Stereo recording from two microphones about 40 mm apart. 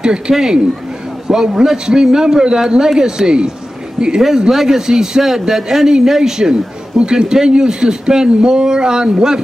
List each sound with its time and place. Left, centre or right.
0.3 s speech: centre
4.5 s speech: centre